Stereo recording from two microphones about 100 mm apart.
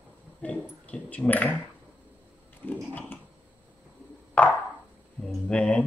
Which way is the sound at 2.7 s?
15° left (ahead or behind).